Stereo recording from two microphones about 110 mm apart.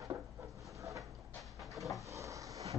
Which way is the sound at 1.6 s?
Centre (ahead or behind).